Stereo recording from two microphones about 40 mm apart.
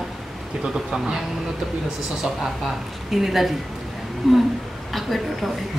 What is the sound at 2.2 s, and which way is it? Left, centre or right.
A man's voice, centre.